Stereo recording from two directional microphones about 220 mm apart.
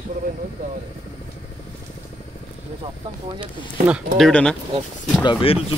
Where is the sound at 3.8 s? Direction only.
Centre (ahead or behind).